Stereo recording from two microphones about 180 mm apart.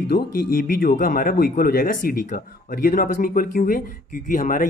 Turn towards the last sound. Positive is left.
turn(degrees=45)  # may be behind; listen again after turning